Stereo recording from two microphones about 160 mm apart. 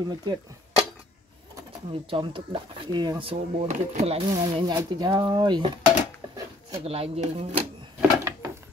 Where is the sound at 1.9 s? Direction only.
35° right (ahead or behind).